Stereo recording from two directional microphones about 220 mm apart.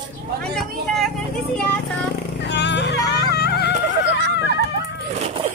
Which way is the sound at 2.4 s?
50° left (ahead or behind).